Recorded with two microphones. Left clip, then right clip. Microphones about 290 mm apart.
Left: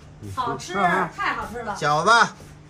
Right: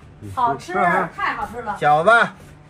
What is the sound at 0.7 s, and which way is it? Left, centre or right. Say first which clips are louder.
Speech: right 2 dB; centre.